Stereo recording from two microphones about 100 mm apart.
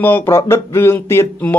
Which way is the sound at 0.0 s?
25° left (ahead or behind).